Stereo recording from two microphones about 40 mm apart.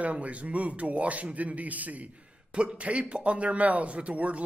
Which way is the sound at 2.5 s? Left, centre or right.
Right.